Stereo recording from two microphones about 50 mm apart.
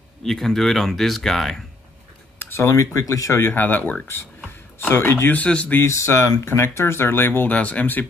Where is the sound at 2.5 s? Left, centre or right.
Left.